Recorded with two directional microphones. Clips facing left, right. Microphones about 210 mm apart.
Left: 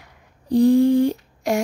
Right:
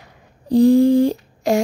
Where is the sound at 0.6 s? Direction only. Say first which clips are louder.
Right 2 dB; 90° right.